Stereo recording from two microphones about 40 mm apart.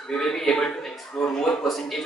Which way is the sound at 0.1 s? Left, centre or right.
Centre.